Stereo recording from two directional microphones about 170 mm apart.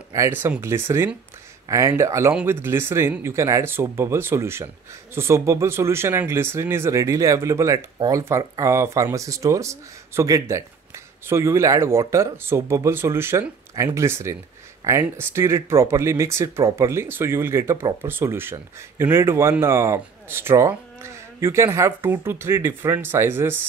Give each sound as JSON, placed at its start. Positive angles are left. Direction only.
{"t": 0.1, "sound": "speech", "side_deg": -15}